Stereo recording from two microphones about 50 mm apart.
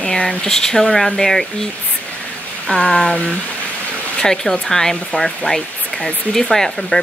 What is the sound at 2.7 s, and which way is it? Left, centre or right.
Speech, centre.